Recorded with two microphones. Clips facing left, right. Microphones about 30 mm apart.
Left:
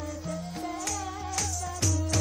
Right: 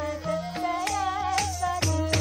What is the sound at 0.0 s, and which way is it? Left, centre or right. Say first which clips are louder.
Music: right 7 dB; right.